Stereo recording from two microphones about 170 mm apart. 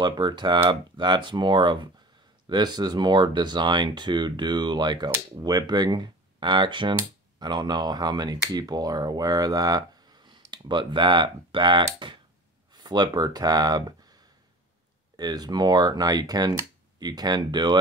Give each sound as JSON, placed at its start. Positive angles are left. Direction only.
{"t": 0.0, "sound": "speech", "side_deg": -25}
{"t": 15.1, "sound": "speech", "side_deg": -25}